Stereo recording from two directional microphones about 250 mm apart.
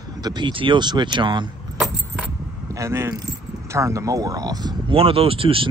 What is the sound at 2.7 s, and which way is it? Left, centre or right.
Speech, centre.